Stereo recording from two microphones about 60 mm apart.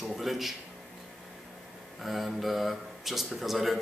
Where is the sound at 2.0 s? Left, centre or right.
Centre.